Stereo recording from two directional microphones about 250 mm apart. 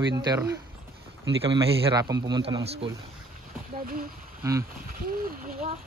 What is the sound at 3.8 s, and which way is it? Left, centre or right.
Speech, right.